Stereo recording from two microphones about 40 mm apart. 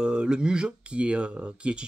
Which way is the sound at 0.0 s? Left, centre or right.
Right.